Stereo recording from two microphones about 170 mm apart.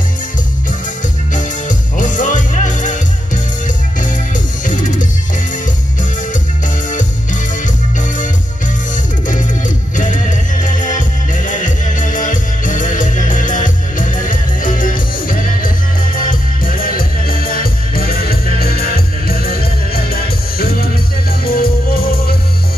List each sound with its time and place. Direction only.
1.3 s music: 50° left (ahead or behind)
9.9 s music: 45° left (ahead or behind)